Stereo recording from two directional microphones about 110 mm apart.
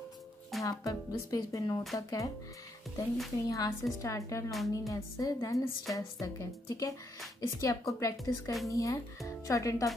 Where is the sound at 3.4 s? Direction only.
35° left (ahead or behind).